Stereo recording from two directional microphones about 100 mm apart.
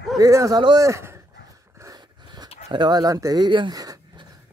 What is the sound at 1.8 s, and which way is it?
Dog, 40° right (ahead or behind).